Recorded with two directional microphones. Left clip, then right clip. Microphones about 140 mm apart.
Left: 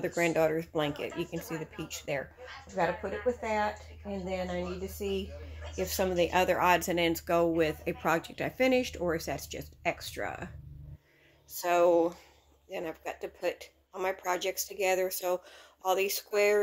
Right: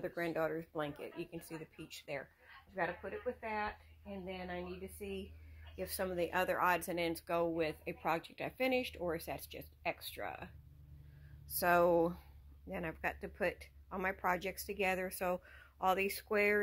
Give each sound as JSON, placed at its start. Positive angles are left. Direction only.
{"t": 0.0, "sound": "speech", "side_deg": 5}
{"t": 2.7, "sound": "speech", "side_deg": -10}
{"t": 5.8, "sound": "speech", "side_deg": 5}
{"t": 11.5, "sound": "speech", "side_deg": 0}
{"t": 12.7, "sound": "speech", "side_deg": 15}